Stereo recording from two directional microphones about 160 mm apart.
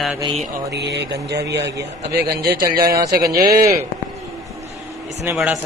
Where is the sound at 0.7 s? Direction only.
90° right.